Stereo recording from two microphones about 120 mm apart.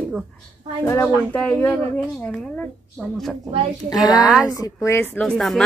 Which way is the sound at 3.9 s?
35° left (ahead or behind).